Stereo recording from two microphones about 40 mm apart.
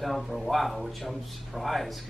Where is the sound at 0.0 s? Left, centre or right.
Centre.